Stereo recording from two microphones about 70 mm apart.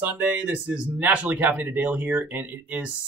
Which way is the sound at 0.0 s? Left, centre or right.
Right.